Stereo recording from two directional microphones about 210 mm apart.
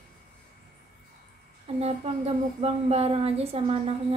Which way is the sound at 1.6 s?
30° right (ahead or behind).